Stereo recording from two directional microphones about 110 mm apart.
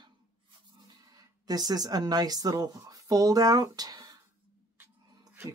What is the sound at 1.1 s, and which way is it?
Speech, 35° right (ahead or behind).